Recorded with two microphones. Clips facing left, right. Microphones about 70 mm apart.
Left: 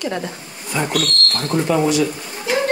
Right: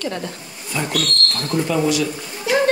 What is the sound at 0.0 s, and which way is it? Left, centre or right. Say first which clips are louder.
A woman's voice: left 2 dB; centre.